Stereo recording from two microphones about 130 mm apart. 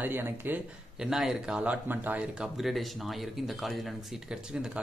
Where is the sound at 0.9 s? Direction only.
5° right (ahead or behind).